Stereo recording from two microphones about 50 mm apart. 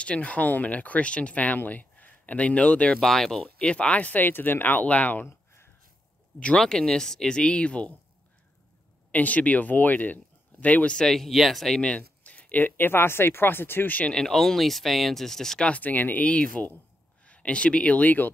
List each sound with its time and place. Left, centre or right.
0.0 s speech: left
3.0 s speech: centre
3.4 s speech: left
5.2 s a sound: left
6.6 s speech: centre
9.1 s speech: left
10.9 s speech: centre
11.8 s speech: left
14.1 s speech: centre
15.6 s speech: left
16.3 s speech: left